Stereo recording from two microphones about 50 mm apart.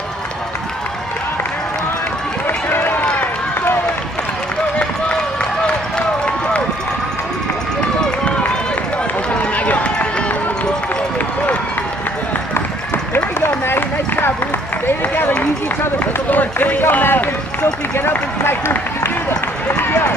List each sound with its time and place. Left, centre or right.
2.4 s run: left
4.7 s run: left
8.0 s run: left
13.1 s run: left
16.3 s run: left
18.4 s run: left